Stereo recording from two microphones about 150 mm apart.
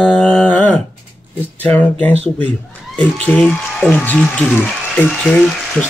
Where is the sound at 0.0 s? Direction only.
10° left (ahead or behind).